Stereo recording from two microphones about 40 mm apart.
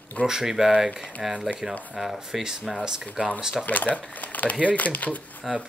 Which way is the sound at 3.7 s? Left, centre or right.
Left.